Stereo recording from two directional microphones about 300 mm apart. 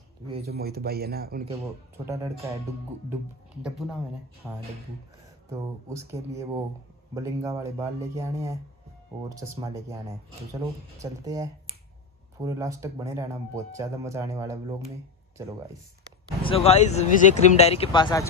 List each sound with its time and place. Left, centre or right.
0.5 s speech: right
2.0 s speech: centre
3.6 s speech: centre
16.4 s speech: centre